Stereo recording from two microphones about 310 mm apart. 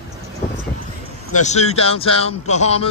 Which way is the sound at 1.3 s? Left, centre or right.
Left.